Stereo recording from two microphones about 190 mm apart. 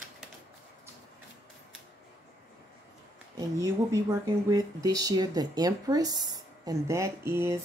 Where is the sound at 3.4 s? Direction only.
15° right (ahead or behind).